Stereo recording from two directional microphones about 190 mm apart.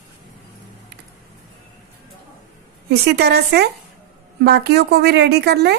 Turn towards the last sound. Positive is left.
turn(degrees=-60)  # may be behind; listen again after turning